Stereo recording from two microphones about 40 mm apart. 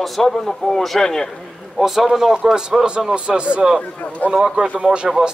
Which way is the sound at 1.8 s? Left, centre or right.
Centre.